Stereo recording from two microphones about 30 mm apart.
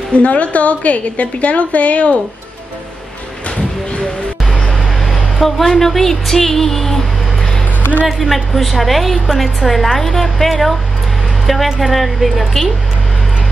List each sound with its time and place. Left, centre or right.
0.2 s a woman's voice: left
5.4 s speech: centre
8.1 s a woman's voice: centre